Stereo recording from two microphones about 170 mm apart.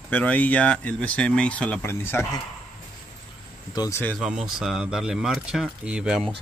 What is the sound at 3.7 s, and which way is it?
Speech, 15° left (ahead or behind).